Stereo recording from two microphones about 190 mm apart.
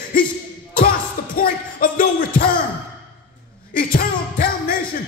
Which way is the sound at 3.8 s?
50° left (ahead or behind).